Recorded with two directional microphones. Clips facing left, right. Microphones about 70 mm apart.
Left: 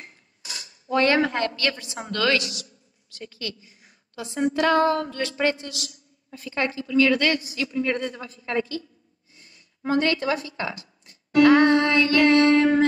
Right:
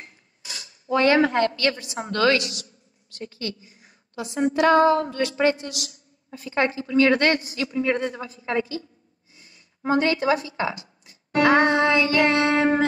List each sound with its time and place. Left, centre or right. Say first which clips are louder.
0.8 s speech: right 2 dB; right
2.5 s a sound: even; right
4.4 s a woman's voice: right 3 dB; right
11.4 s music: left 1 dB; right
12.1 s child singing: left 3 dB; right